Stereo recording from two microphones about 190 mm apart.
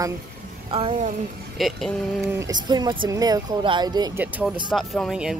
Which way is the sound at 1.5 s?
Centre (ahead or behind).